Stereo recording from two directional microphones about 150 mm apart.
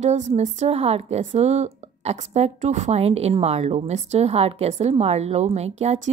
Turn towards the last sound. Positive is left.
turn(degrees=-45)  # may be behind; listen again after turning